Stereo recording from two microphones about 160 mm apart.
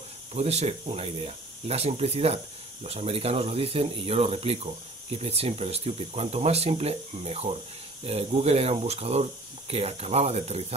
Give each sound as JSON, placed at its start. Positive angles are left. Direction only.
{"t": 0.3, "sound": "speech", "side_deg": -40}